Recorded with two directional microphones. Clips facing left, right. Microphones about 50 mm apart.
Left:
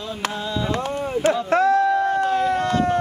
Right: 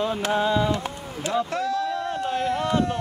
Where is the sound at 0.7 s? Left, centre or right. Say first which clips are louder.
Left 7 dB; left.